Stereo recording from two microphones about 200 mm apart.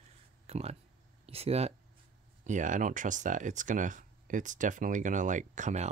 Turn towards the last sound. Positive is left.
turn(degrees=-35)  # may be behind; listen again after turning